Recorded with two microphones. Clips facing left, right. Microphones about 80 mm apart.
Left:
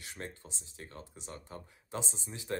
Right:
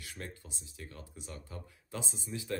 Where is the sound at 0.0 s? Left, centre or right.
Left.